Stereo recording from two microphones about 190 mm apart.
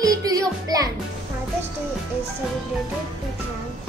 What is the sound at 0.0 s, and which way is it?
Music, 20° right (ahead or behind).